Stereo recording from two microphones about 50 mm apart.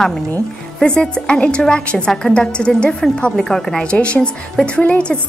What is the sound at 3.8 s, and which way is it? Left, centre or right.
A woman's voice, left.